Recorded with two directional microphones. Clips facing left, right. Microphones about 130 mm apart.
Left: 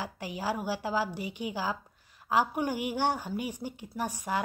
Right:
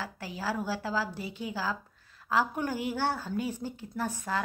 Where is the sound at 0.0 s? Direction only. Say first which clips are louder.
Left 1 dB; 15° left (ahead or behind).